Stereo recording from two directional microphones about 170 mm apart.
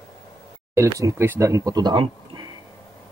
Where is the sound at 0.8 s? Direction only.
20° right (ahead or behind).